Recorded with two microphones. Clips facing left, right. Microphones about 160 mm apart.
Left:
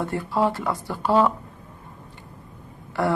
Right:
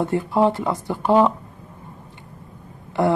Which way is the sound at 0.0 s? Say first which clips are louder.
Right 4 dB; 20° right (ahead or behind).